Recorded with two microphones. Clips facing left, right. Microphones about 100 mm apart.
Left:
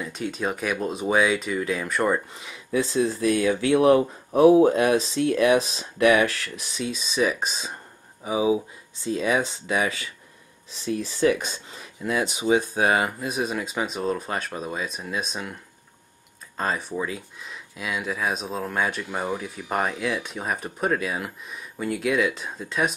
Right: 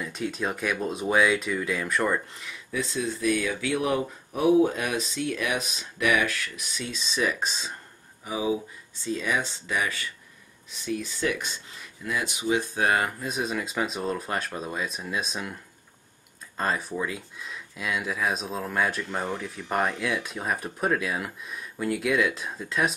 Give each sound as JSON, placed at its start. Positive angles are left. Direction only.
{"t": 0.0, "sound": "speech", "side_deg": 0}
{"t": 2.7, "sound": "speech", "side_deg": 30}
{"t": 6.8, "sound": "speech", "side_deg": 5}
{"t": 8.3, "sound": "speech", "side_deg": 15}
{"t": 16.5, "sound": "speech", "side_deg": 5}